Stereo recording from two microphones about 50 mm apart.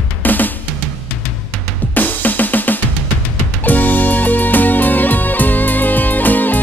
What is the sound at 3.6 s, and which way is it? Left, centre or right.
Music, left.